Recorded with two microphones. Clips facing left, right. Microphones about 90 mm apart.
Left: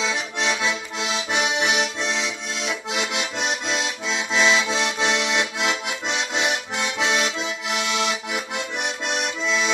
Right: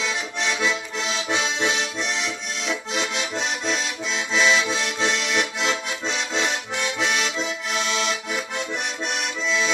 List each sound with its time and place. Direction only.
0.0 s accordion: 20° left (ahead or behind)
4.3 s accordion: 20° left (ahead or behind)